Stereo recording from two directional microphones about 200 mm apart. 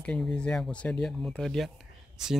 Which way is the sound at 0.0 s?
5° left (ahead or behind).